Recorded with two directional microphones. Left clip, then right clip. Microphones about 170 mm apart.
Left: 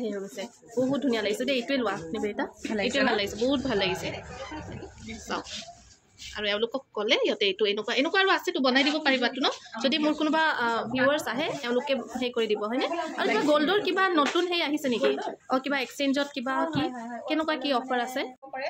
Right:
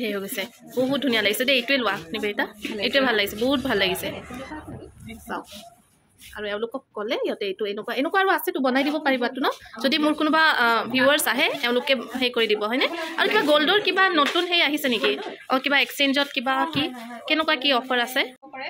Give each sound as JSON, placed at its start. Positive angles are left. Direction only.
{"t": 0.0, "sound": "speech", "side_deg": 0}
{"t": 5.3, "sound": "speech", "side_deg": 0}